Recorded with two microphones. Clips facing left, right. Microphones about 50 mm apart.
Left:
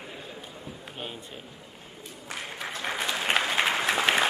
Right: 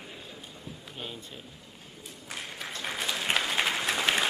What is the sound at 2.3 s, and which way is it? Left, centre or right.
Applause, centre.